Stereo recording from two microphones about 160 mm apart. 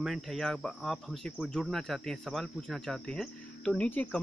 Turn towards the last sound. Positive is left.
turn(degrees=10)  # may be behind; listen again after turning